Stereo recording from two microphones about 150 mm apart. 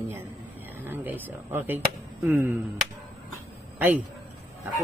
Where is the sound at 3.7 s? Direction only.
10° right (ahead or behind).